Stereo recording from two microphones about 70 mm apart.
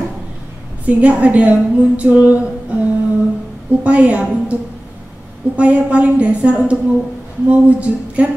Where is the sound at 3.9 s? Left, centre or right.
Centre.